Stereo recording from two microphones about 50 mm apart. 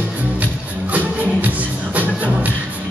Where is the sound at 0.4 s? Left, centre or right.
Right.